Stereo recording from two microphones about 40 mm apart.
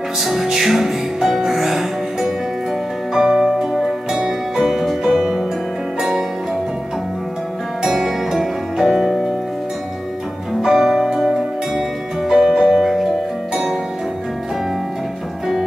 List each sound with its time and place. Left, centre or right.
0.2 s music: centre
3.2 s music: centre
7.8 s music: centre
10.6 s music: centre